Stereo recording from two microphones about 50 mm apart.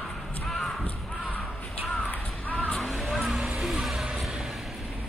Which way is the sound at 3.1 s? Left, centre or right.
Centre.